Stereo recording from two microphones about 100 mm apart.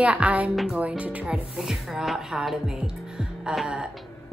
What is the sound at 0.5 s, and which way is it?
Speech, 5° right (ahead or behind).